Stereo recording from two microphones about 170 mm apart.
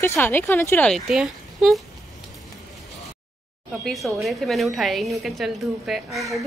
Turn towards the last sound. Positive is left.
turn(degrees=0)  # may be behind; listen again after turning